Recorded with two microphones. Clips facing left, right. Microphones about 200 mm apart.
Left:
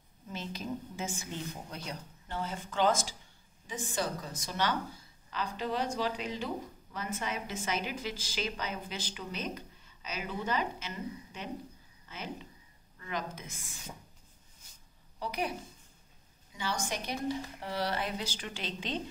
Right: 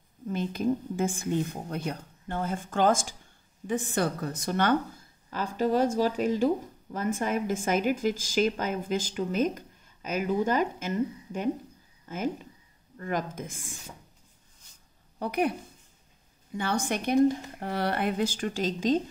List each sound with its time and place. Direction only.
0.3 s speech: 55° right (ahead or behind)
15.1 s speech: 55° right (ahead or behind)
16.5 s speech: 55° right (ahead or behind)